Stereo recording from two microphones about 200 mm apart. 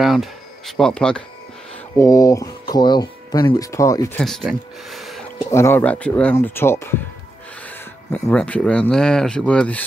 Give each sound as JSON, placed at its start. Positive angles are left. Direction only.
{"t": 0.0, "sound": "speech", "side_deg": 0}
{"t": 2.0, "sound": "speech", "side_deg": 15}
{"t": 4.2, "sound": "speech", "side_deg": 0}
{"t": 5.5, "sound": "speech", "side_deg": 10}